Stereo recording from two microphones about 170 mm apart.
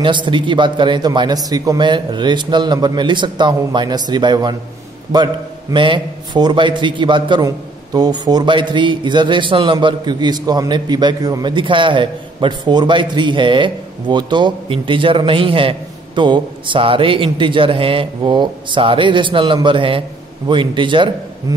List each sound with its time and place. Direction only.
0.0 s a man's voice: 30° right (ahead or behind)